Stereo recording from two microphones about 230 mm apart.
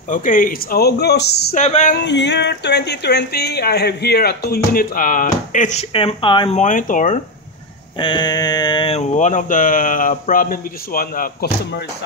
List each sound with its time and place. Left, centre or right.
0.1 s speech: left
1.6 s speech: left
2.0 s speech: left
8.0 s speech: centre; by 11.8 s left